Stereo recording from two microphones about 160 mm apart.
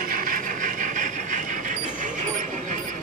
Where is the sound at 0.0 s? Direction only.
60° right (ahead or behind).